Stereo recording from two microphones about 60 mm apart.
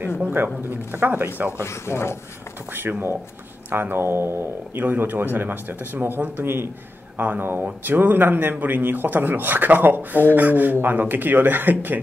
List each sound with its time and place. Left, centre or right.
0.2 s speech: right
1.6 s speech: left
2.7 s speech: right
4.8 s speech: right